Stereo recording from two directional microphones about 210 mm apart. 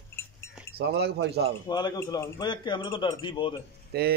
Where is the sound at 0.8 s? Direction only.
50° right (ahead or behind).